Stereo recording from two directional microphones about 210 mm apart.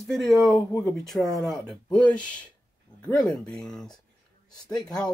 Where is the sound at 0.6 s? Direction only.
15° left (ahead or behind).